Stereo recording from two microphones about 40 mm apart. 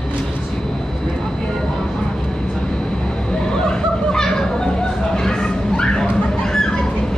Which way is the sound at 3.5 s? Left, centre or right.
Centre.